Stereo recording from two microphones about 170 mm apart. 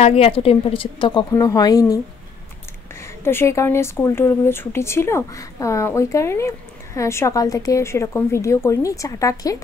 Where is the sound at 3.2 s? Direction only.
15° left (ahead or behind).